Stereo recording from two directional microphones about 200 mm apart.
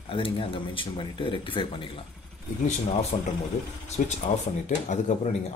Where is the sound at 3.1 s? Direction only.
30° left (ahead or behind).